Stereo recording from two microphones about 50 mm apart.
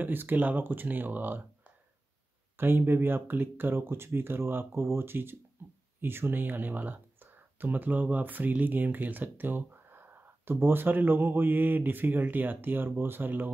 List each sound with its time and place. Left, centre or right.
0.0 s speech: right
2.5 s speech: right